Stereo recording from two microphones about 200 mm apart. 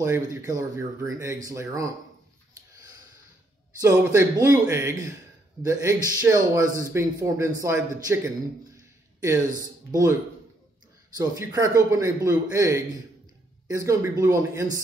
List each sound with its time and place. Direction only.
0.0 s speech: 15° right (ahead or behind)
3.8 s speech: 15° right (ahead or behind)
8.7 s a sound: 15° right (ahead or behind)
9.8 s speech: 15° right (ahead or behind)
11.1 s speech: 15° right (ahead or behind)